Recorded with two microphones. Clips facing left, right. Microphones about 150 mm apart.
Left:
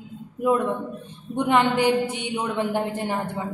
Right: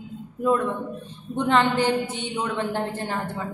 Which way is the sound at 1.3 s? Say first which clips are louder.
Left 1 dB; 15° left (ahead or behind).